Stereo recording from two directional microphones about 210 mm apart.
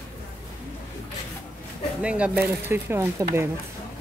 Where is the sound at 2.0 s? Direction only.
5° right (ahead or behind).